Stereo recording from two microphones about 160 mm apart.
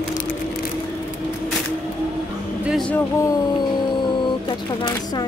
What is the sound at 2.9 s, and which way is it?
Speech, 20° left (ahead or behind).